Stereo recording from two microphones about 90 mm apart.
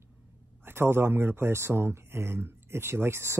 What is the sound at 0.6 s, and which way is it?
Speech, 25° right (ahead or behind).